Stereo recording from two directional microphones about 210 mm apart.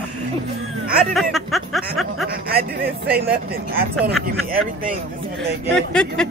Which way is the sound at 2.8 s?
50° right (ahead or behind).